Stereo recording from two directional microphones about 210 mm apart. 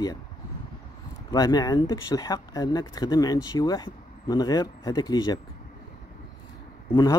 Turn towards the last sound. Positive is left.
turn(degrees=20)  # may be behind; listen again after turning